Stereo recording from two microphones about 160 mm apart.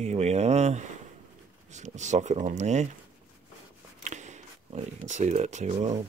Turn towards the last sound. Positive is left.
turn(degrees=-45)  # may be behind; listen again after turning